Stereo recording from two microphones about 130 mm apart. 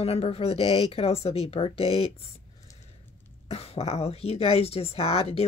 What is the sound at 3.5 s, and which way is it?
Speech, 55° left (ahead or behind).